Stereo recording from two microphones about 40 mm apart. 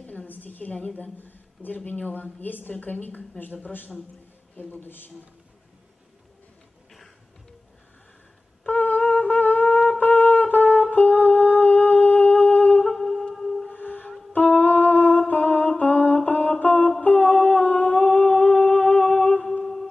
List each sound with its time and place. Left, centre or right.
0.0 s a sound: left
0.9 s a man's voice: left
8.6 s wind instrument: left
10.5 s music: left
12.8 s music: centre
13.7 s music: left
15.3 s humming: left
16.3 s music: left
17.0 s humming: left
19.6 s music: centre